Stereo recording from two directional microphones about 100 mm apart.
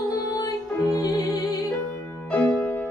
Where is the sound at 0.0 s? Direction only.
35° left (ahead or behind).